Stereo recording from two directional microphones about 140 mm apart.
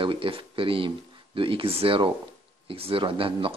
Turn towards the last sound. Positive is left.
turn(degrees=-40)  # may be behind; listen again after turning